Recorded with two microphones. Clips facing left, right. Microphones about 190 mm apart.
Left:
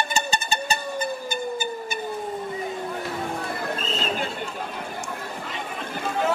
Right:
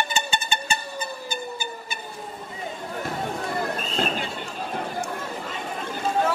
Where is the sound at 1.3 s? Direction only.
50° left (ahead or behind).